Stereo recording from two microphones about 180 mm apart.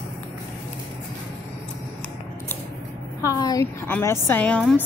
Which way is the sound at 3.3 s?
20° left (ahead or behind).